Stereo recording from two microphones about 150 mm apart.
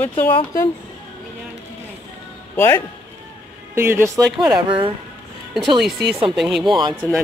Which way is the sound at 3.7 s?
15° right (ahead or behind).